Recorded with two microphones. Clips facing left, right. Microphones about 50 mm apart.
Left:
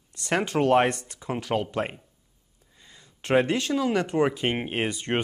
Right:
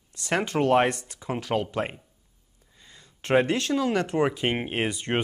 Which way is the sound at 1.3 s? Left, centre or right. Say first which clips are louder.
Even; left.